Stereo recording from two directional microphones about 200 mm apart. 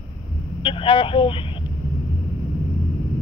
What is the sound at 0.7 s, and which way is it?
Speech, 25° left (ahead or behind).